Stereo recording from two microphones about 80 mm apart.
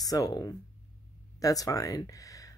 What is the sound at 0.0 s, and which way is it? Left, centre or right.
Speech, left.